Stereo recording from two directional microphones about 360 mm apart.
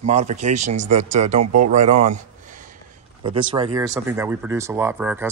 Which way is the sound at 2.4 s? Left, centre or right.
Right.